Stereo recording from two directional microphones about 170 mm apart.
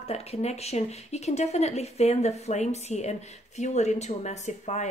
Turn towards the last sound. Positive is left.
turn(degrees=45)  # may be behind; listen again after turning